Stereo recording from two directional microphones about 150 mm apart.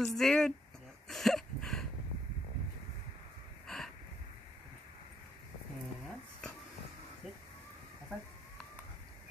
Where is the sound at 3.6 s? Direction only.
5° left (ahead or behind).